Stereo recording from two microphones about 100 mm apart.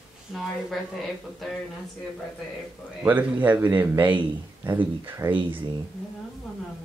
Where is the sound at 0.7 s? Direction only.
Centre (ahead or behind).